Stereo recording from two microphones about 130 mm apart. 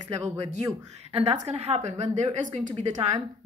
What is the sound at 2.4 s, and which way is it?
Speech, 80° right.